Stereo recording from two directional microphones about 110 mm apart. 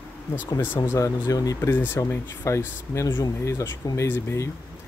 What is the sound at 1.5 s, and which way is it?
Speech, 20° left (ahead or behind).